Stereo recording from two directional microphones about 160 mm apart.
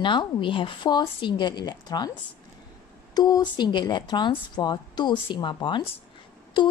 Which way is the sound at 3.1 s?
25° left (ahead or behind).